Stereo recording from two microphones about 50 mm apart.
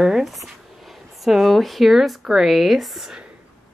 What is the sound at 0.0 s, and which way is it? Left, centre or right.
Speech, centre.